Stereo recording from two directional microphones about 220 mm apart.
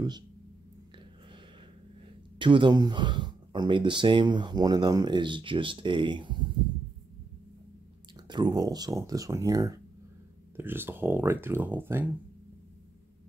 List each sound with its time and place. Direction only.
2.3 s speech: 20° right (ahead or behind)
8.3 s speech: 20° right (ahead or behind)